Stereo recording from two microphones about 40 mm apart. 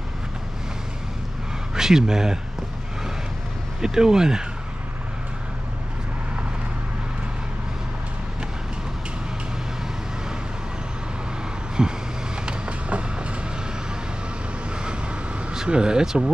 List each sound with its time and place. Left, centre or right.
1.8 s speech: centre
3.8 s speech: centre
11.8 s vehicle: centre
12.4 s train: right
15.5 s speech: centre